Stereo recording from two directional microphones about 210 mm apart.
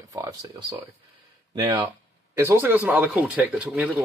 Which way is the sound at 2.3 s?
10° right (ahead or behind).